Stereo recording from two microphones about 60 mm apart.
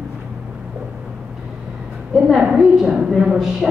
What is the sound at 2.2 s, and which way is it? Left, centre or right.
A woman's voice, centre.